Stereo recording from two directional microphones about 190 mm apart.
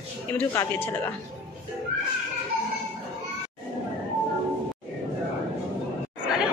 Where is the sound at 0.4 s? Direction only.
10° left (ahead or behind).